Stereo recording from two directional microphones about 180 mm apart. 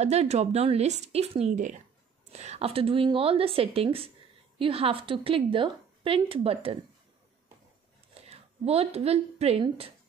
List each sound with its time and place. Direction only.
0.0 s speech: 35° right (ahead or behind)
8.1 s a woman's voice: 35° right (ahead or behind)